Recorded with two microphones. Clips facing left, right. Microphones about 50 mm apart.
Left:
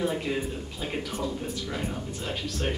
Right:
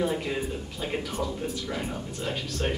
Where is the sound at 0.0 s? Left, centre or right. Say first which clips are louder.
Even; centre.